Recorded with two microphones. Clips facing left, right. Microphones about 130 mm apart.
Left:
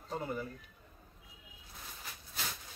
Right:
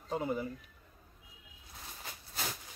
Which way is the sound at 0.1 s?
15° right (ahead or behind).